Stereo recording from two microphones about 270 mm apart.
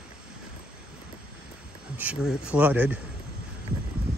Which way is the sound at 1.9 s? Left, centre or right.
Centre.